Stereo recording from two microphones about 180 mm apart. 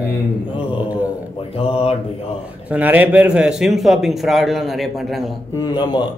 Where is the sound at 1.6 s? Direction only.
35° left (ahead or behind).